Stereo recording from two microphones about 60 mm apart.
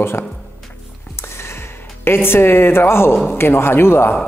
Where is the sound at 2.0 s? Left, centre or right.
Left.